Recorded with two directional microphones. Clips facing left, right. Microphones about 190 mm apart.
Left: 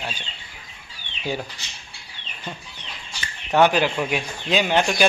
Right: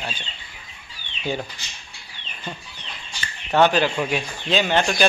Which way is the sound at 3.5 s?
10° left (ahead or behind).